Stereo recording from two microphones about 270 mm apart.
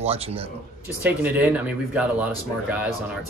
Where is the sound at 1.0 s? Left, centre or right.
Centre.